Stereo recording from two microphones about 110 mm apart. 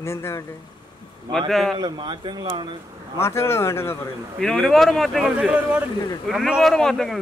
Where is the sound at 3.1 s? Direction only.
25° left (ahead or behind).